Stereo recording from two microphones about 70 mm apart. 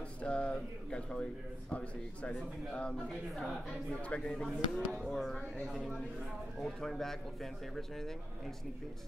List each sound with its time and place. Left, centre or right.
0.2 s speech: centre
4.4 s speech: centre
5.6 s speech: centre